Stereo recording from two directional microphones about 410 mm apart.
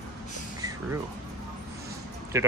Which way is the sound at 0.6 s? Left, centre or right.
Centre.